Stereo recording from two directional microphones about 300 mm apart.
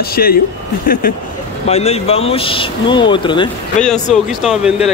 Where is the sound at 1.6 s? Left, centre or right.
Centre.